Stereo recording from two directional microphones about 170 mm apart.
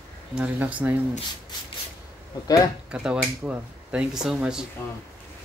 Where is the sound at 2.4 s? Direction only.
20° left (ahead or behind).